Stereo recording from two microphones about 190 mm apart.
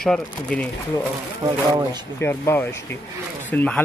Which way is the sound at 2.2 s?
10° left (ahead or behind).